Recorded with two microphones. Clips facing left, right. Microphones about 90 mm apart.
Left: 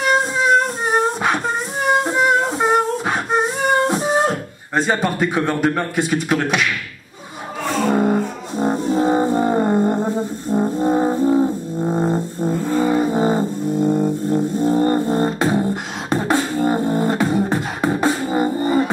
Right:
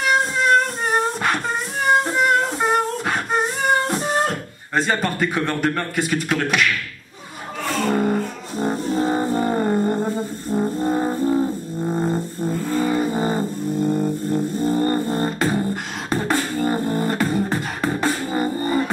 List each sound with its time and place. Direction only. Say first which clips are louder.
0.0 s a sound: left 2 dB; centre (ahead or behind)
7.6 s music: left 3 dB; centre (ahead or behind)
10.7 s brass instrument: left 4 dB; 5° left (ahead or behind)
11.4 s music: left 3 dB; 20° left (ahead or behind)
12.2 s music: left 3 dB; centre (ahead or behind)